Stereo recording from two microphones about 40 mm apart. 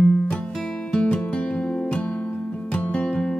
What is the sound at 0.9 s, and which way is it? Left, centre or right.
Music, left.